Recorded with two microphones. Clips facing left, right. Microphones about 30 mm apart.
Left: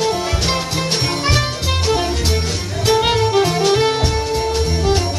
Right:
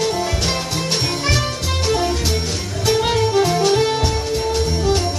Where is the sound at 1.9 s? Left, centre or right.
Centre.